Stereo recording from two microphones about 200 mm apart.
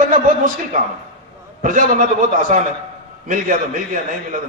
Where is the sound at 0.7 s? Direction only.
40° right (ahead or behind).